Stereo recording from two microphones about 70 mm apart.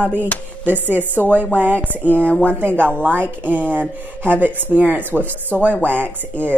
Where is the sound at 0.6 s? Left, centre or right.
Right.